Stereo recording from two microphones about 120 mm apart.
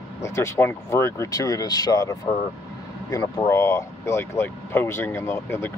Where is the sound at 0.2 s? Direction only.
20° left (ahead or behind).